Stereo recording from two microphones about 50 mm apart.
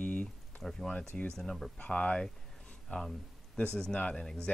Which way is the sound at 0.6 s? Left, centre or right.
Centre.